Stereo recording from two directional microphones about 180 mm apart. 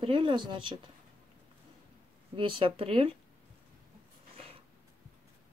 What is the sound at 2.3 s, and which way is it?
Speech, 30° right (ahead or behind).